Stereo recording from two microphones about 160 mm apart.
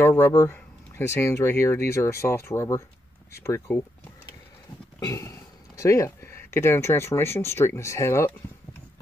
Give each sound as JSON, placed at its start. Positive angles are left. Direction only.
{"t": 0.0, "sound": "speech", "side_deg": 15}
{"t": 5.0, "sound": "speech", "side_deg": 20}